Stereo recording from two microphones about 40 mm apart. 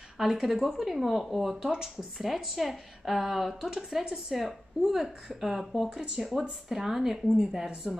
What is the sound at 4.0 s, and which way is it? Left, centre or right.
Speech, centre.